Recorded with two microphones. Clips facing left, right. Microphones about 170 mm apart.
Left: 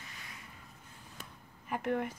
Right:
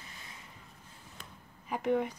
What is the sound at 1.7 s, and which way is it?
Speech, centre (ahead or behind).